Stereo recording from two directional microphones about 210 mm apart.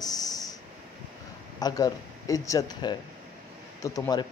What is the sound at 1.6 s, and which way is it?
Speech, 15° left (ahead or behind).